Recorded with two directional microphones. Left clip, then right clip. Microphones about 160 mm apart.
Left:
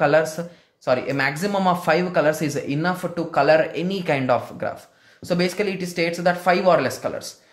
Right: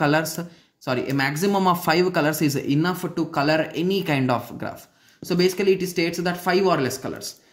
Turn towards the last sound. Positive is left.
turn(degrees=-25)  # may be behind; listen again after turning